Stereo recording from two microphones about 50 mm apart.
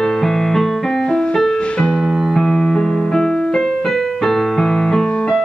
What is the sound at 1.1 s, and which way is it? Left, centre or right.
Music, centre.